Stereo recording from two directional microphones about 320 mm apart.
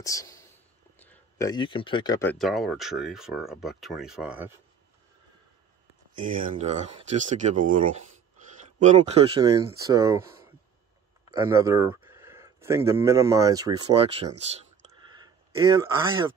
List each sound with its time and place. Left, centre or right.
0.0 s speech: centre
6.5 s speech: right
8.7 s speech: right
15.6 s speech: centre